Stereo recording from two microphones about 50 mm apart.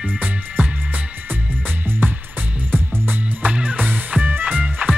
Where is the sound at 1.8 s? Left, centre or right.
Right.